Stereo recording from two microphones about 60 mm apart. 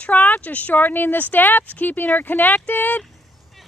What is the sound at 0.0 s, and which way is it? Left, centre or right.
Speech, left.